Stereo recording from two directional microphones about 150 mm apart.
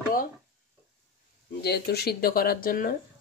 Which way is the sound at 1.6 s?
90° left.